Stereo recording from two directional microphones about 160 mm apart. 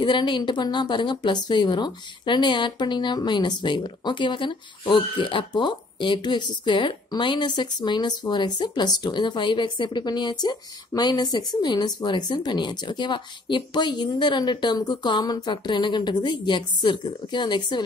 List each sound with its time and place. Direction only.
0.0 s speech: 30° left (ahead or behind)